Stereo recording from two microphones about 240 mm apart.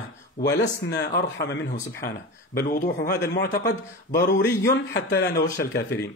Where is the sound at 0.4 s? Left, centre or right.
Left.